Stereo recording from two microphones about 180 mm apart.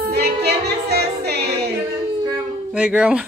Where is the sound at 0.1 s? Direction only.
65° right (ahead or behind).